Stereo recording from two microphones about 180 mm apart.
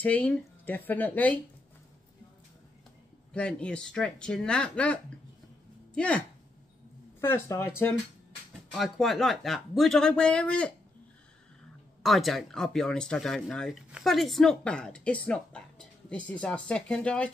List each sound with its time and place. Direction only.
0.0 s speech: 10° left (ahead or behind)
3.3 s speech: 5° left (ahead or behind)
5.9 s speech: 5° left (ahead or behind)
8.7 s speech: centre (ahead or behind)
12.0 s speech: centre (ahead or behind)